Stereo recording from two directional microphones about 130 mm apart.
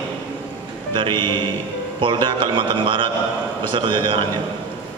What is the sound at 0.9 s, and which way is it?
Speech, 35° right (ahead or behind).